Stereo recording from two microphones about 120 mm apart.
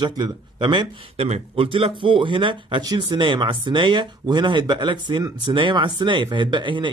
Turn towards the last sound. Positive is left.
turn(degrees=-40)  # may be behind; listen again after turning